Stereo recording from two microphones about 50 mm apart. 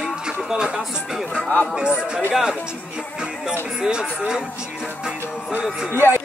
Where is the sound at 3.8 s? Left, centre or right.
Centre.